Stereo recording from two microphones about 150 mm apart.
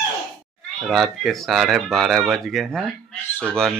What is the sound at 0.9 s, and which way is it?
A man's voice, centre (ahead or behind).